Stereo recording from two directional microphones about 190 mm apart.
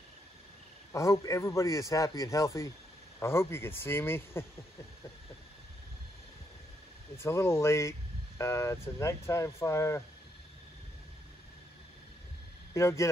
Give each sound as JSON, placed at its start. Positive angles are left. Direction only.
{"t": 0.9, "sound": "a man's voice", "side_deg": 15}
{"t": 7.2, "sound": "a man's voice", "side_deg": 15}
{"t": 12.7, "sound": "a man's voice", "side_deg": 15}